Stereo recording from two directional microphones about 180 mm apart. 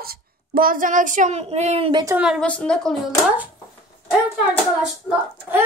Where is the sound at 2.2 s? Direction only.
Centre (ahead or behind).